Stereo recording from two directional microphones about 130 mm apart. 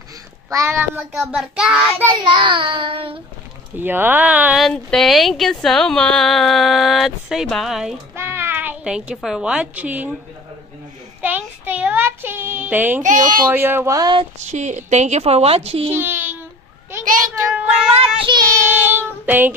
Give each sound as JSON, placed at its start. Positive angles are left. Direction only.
{"t": 0.5, "sound": "speech", "side_deg": -20}
{"t": 1.1, "sound": "child singing", "side_deg": -5}
{"t": 2.2, "sound": "child singing", "side_deg": -40}
{"t": 3.7, "sound": "child singing", "side_deg": -15}
{"t": 4.6, "sound": "speech", "side_deg": 0}
{"t": 8.2, "sound": "a woman's voice", "side_deg": -20}
{"t": 11.1, "sound": "child singing", "side_deg": -15}
{"t": 13.0, "sound": "speech", "side_deg": -80}
{"t": 13.5, "sound": "child singing", "side_deg": -15}
{"t": 14.4, "sound": "a woman's voice", "side_deg": -65}
{"t": 15.9, "sound": "a child's voice", "side_deg": -15}
{"t": 17.9, "sound": "child singing", "side_deg": -40}
{"t": 18.6, "sound": "child singing", "side_deg": -15}